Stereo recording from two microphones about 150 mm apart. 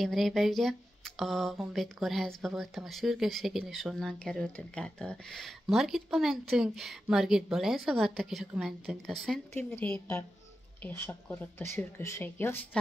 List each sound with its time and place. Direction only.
0.0 s speech: centre (ahead or behind)
9.7 s speech: 10° left (ahead or behind)